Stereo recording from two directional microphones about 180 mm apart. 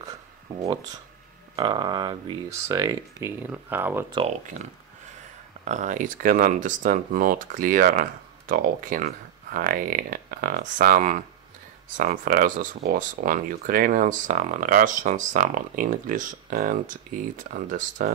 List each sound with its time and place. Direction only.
0.5 s speech: 15° right (ahead or behind)
5.7 s speech: 40° right (ahead or behind)